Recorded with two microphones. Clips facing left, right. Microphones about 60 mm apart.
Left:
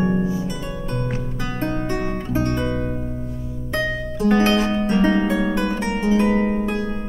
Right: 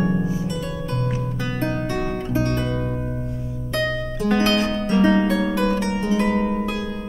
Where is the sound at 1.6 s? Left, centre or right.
Centre.